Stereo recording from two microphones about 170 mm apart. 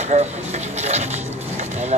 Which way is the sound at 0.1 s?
45° right (ahead or behind).